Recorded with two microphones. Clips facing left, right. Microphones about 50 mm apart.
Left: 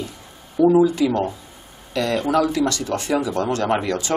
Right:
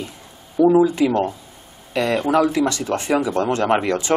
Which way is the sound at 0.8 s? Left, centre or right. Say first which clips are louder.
Right 1 dB; right.